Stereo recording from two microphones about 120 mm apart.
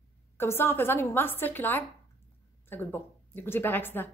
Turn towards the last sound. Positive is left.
turn(degrees=15)  # may be behind; listen again after turning